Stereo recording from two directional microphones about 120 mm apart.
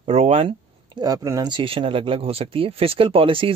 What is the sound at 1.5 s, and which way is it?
Speech, 50° right (ahead or behind).